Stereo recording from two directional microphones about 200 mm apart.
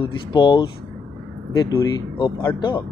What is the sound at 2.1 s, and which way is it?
Speech, 20° left (ahead or behind).